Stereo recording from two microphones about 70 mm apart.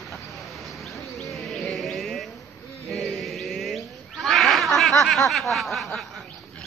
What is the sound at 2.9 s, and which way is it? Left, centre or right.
Cat, centre.